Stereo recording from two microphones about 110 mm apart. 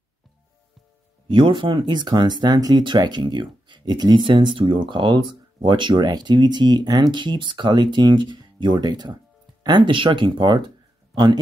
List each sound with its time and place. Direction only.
1.2 s speech: 50° right (ahead or behind)